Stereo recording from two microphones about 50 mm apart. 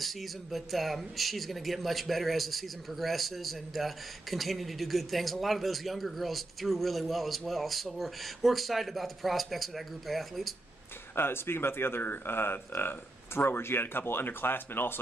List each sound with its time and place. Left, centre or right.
0.0 s a man's voice: centre
11.1 s speech: left